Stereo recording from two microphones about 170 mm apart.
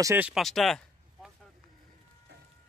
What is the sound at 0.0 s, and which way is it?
Speech, 15° right (ahead or behind).